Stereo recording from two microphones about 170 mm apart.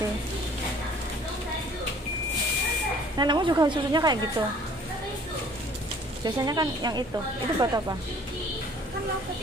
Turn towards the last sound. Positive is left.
turn(degrees=-20)  # may be behind; listen again after turning